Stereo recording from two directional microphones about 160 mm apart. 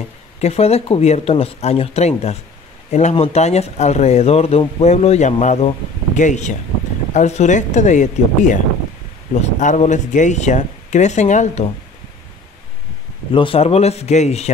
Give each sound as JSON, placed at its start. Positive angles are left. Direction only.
{"t": 0.4, "sound": "speech", "side_deg": 40}
{"t": 13.3, "sound": "speech", "side_deg": 35}